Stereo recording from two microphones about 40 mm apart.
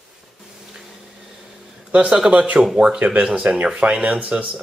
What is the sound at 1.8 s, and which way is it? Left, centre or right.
A man's voice, right.